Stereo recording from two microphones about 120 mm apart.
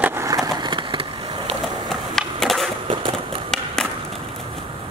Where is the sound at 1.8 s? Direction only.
Centre (ahead or behind).